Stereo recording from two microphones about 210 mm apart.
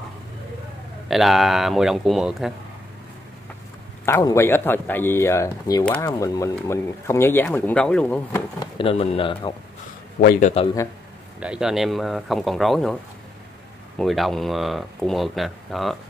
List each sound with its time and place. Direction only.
1.0 s speech: centre (ahead or behind)
4.0 s speech: 15° left (ahead or behind)
8.7 s speech: 25° left (ahead or behind)
10.2 s a man's voice: 50° left (ahead or behind)
10.5 s speech: 25° left (ahead or behind)
11.3 s speech: 5° right (ahead or behind)
13.9 s speech: centre (ahead or behind)